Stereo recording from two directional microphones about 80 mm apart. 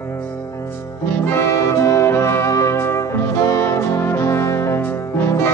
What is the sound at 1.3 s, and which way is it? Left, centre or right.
Music, left.